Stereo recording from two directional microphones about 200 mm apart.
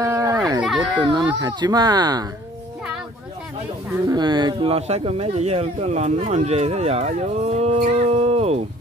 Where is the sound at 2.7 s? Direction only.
5° right (ahead or behind).